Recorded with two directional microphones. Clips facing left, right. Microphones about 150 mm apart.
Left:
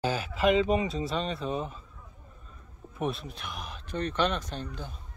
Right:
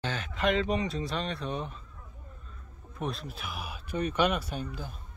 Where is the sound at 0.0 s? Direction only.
10° left (ahead or behind).